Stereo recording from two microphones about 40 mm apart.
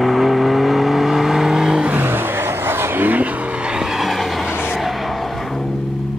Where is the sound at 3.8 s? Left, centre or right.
Centre.